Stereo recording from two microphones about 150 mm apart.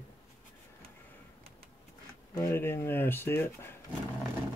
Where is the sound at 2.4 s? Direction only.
15° left (ahead or behind).